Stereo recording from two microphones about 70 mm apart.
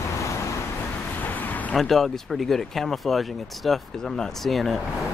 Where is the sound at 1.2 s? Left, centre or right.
Left.